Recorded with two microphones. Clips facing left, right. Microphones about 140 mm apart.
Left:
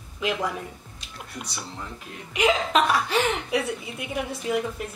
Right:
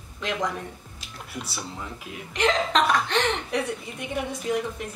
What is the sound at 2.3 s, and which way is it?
Speech, 5° left (ahead or behind).